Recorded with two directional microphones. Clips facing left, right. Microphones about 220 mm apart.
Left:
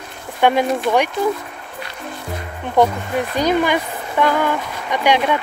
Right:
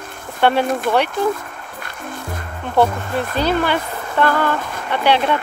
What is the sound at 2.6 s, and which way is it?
Speech, 15° left (ahead or behind).